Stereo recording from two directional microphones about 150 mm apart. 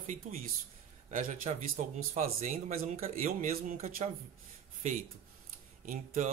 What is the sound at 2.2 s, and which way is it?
Speech, 70° right (ahead or behind).